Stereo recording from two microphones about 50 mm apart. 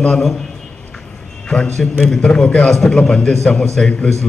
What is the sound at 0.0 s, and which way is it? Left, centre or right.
Speech, centre.